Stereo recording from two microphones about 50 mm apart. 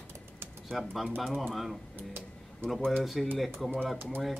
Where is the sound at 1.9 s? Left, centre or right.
Right.